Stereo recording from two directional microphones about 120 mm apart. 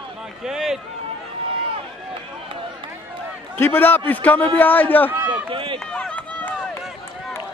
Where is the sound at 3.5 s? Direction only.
15° left (ahead or behind).